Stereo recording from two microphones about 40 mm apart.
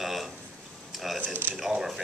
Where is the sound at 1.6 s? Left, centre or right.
Centre.